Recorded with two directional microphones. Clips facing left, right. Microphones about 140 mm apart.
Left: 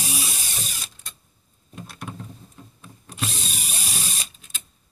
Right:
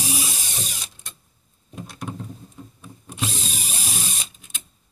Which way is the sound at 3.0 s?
20° right (ahead or behind).